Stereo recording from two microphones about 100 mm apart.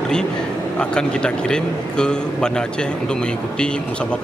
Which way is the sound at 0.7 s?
10° left (ahead or behind).